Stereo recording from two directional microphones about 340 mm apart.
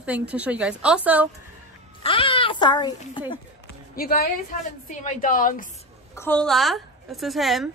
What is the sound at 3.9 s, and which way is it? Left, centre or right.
A woman's voice, left.